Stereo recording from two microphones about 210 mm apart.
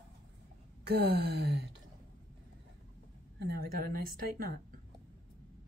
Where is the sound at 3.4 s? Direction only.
45° right (ahead or behind).